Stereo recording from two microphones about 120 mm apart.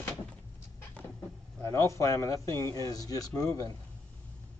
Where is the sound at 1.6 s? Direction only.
25° left (ahead or behind).